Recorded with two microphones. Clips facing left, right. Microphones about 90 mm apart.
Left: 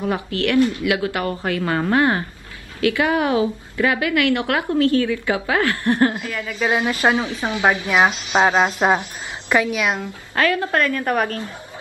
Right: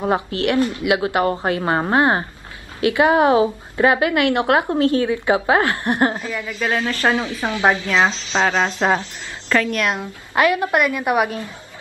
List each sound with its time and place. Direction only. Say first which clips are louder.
0.0 s a woman's voice: right 2 dB; 25° right (ahead or behind)
6.6 s a woman's voice: left 2 dB; 15° left (ahead or behind)
9.9 s a woman's voice: right 3 dB; 15° right (ahead or behind)